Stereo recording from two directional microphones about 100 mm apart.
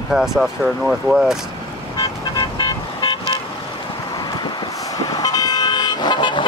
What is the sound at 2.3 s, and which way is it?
Vehicle, 50° left (ahead or behind).